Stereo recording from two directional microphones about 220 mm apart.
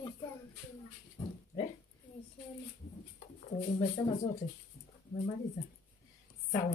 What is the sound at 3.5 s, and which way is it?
Speech, 20° left (ahead or behind).